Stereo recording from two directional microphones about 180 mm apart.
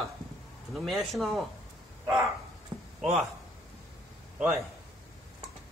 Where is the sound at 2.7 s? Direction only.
25° right (ahead or behind).